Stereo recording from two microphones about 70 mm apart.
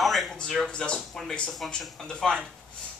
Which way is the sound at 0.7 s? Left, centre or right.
Centre.